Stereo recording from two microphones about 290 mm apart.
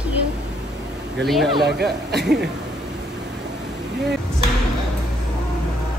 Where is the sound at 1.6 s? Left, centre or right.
Right.